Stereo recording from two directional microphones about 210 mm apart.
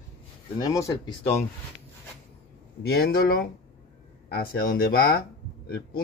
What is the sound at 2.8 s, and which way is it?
Speech, 50° left (ahead or behind).